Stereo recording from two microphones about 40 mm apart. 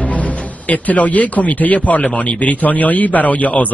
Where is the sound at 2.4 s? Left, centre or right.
Left.